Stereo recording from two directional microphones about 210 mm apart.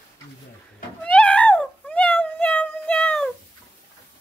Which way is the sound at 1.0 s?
5° left (ahead or behind).